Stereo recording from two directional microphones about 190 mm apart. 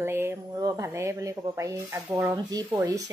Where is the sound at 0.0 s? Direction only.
15° right (ahead or behind).